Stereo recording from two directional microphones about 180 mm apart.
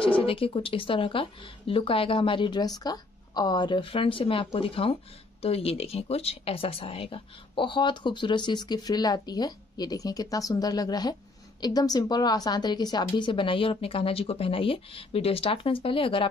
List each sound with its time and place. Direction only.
0.2 s speech: 30° left (ahead or behind)